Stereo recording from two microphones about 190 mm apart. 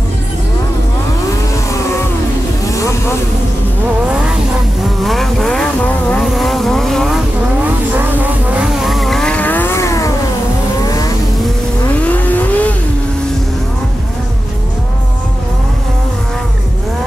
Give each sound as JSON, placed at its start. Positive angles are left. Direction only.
{"t": 2.7, "sound": "vehicle", "side_deg": 15}
{"t": 5.0, "sound": "vehicle", "side_deg": 0}
{"t": 8.8, "sound": "vehicle", "side_deg": 0}
{"t": 12.1, "sound": "vehicle", "side_deg": 10}